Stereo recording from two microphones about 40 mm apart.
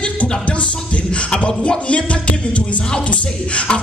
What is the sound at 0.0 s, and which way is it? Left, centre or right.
Music, left.